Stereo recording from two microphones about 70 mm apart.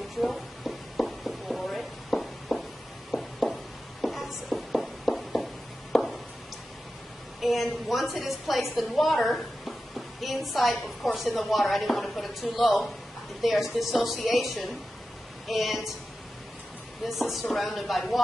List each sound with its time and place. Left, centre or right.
0.2 s a sound: centre
7.3 s a woman's voice: centre
17.0 s speech: centre